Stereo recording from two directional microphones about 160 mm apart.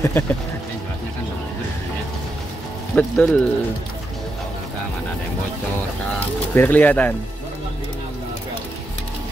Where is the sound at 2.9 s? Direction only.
10° left (ahead or behind).